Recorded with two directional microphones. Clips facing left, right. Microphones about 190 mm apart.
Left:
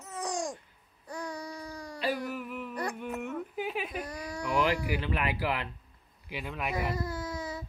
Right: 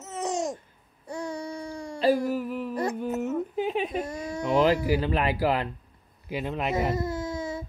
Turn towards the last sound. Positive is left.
turn(degrees=-25)  # may be behind; listen again after turning